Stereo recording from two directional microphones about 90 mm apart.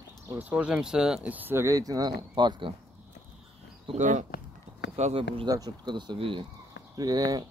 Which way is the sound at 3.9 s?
90° right.